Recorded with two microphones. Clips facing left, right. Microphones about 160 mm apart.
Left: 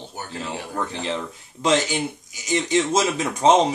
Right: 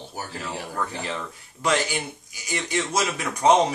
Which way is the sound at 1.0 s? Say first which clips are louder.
Left 4 dB; 20° left (ahead or behind).